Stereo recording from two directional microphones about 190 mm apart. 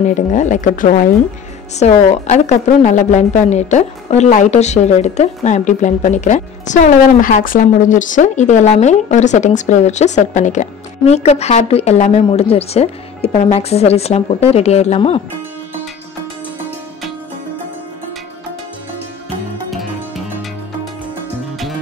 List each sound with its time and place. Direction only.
0.0 s a woman's voice: 40° left (ahead or behind)
19.7 s music: centre (ahead or behind)